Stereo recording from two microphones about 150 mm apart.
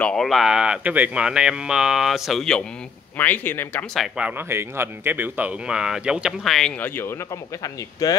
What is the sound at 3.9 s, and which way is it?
Speech, 5° right (ahead or behind).